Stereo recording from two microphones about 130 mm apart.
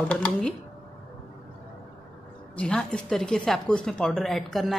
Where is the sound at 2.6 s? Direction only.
5° left (ahead or behind).